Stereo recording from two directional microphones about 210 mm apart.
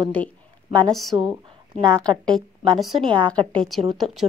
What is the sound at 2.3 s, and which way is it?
A woman's voice, 20° right (ahead or behind).